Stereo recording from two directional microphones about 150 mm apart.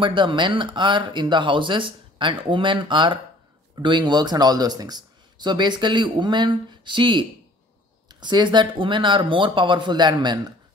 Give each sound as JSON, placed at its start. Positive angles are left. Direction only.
{"t": 0.0, "sound": "speech", "side_deg": -35}